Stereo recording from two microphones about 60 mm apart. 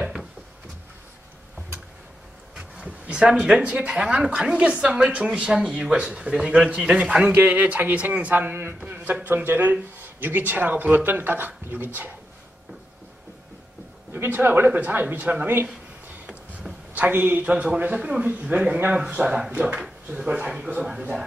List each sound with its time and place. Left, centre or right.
0.0 s drawer open or close: centre
2.5 s speech: centre
7.3 s a man's voice: right
14.1 s a man's voice: right
15.4 s a man's voice: right
16.9 s speech: right